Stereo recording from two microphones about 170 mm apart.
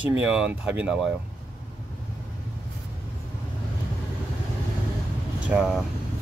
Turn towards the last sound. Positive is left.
turn(degrees=-5)  # may be behind; listen again after turning